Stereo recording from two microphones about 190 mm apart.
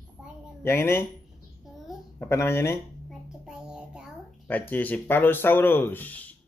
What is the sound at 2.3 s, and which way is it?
Speech, 15° left (ahead or behind).